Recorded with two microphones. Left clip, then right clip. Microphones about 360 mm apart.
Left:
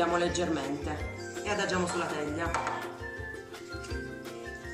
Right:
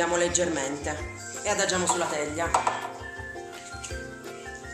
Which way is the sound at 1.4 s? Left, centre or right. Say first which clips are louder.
Right 4 dB; right.